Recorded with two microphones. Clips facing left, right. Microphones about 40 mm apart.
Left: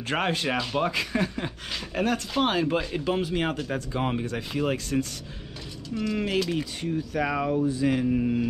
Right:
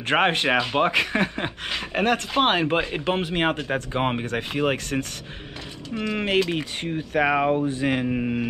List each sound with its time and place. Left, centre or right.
0.1 s speech: right